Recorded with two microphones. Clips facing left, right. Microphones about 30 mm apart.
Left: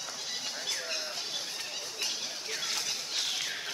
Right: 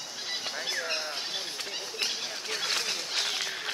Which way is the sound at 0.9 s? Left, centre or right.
Right.